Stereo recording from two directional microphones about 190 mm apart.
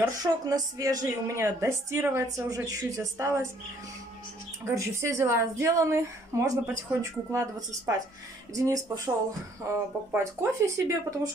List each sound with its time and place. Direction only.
0.0 s a woman's voice: 20° right (ahead or behind)
4.6 s a woman's voice: 15° right (ahead or behind)
10.1 s a woman's voice: 15° right (ahead or behind)